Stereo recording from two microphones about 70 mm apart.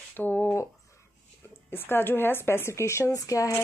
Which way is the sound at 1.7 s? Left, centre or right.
Left.